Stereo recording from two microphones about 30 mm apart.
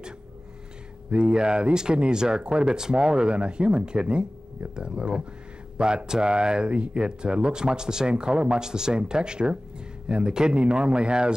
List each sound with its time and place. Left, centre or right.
1.1 s speech: right
8.1 s speech: right